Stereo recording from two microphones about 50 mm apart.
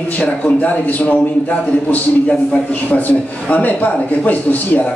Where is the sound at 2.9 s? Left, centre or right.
Left.